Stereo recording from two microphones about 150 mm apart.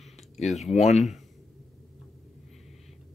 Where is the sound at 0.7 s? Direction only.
45° left (ahead or behind).